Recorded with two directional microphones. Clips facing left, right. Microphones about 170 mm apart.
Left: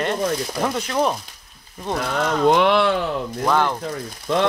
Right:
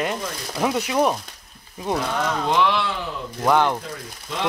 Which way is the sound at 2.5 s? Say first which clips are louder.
Left 6 dB; 60° left (ahead or behind).